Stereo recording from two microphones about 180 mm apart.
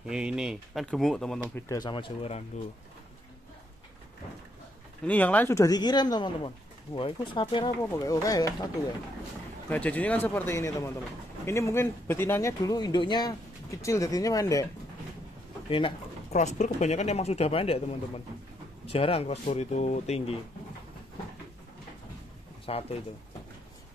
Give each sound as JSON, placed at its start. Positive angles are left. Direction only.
{"t": 0.0, "sound": "speech", "side_deg": -5}
{"t": 1.5, "sound": "speech", "side_deg": 20}
{"t": 5.0, "sound": "speech", "side_deg": 10}
{"t": 9.7, "sound": "speech", "side_deg": 10}
{"t": 15.7, "sound": "speech", "side_deg": 35}
{"t": 22.7, "sound": "speech", "side_deg": 35}